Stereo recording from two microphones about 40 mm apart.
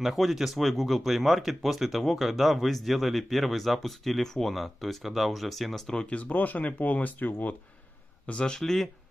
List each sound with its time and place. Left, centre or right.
0.0 s speech: centre
6.2 s speech: left
8.5 s speech: centre